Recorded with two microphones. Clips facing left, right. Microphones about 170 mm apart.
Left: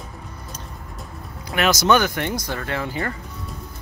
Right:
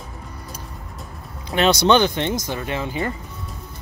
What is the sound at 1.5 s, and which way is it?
Speech, 30° right (ahead or behind).